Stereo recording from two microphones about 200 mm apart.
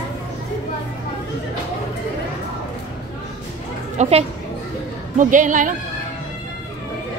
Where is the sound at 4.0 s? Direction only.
30° right (ahead or behind).